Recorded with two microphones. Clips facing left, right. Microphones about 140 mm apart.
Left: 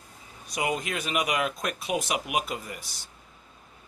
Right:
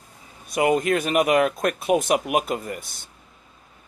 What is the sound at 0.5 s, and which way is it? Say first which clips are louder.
Speech: right 10 dB; 55° right (ahead or behind).